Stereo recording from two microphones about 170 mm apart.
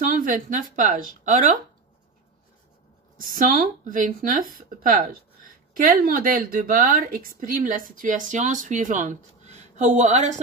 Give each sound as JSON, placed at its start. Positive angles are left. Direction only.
{"t": 0.0, "sound": "a woman's voice", "side_deg": -50}
{"t": 3.2, "sound": "a woman's voice", "side_deg": -55}